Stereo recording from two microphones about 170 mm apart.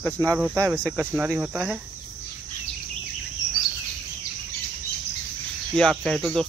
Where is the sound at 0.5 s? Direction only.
20° right (ahead or behind).